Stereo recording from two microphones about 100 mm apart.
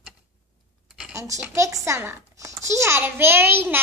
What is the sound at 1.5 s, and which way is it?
A child's voice, 30° right (ahead or behind).